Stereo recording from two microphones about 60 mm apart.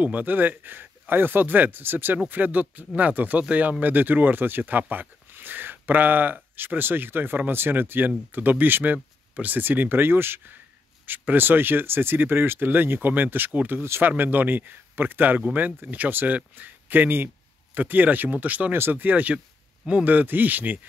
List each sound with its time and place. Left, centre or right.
0.0 s speech: right